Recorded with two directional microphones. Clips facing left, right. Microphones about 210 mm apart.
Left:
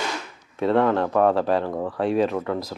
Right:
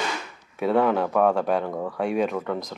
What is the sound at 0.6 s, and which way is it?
Speech, 5° right (ahead or behind).